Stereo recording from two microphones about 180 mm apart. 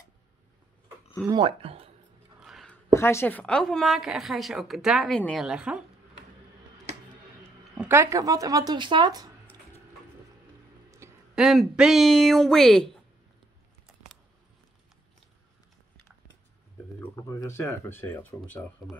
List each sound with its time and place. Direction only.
1.3 s speech: 30° right (ahead or behind)
2.4 s a sound: centre (ahead or behind)
2.9 s a woman's voice: 15° left (ahead or behind); by 5.9 s 5° right (ahead or behind)
7.7 s speech: 10° right (ahead or behind)
10.9 s a sound: 15° right (ahead or behind)
11.3 s a woman's voice: centre (ahead or behind)
17.0 s speech: 15° left (ahead or behind)